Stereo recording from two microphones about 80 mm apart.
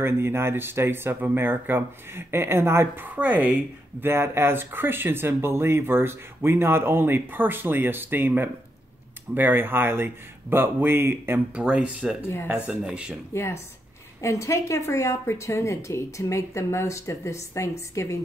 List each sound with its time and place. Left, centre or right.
0.0 s speech: right
4.1 s speech: right
11.5 s speech: centre
12.2 s a woman's voice: left
12.4 s speech: centre
13.3 s a woman's voice: left